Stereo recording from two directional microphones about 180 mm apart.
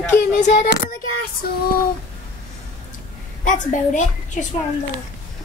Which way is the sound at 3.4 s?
45° left (ahead or behind).